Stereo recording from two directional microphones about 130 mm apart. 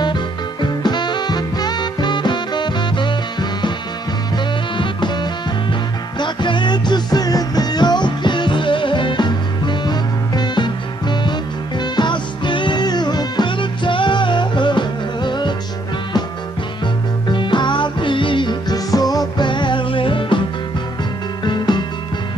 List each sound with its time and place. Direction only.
0.0 s music: 35° left (ahead or behind)
4.7 s music: 35° left (ahead or behind)
16.8 s music: 35° left (ahead or behind)
21.5 s music: 35° left (ahead or behind)